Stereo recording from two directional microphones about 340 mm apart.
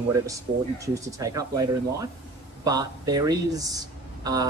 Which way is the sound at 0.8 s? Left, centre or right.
Centre.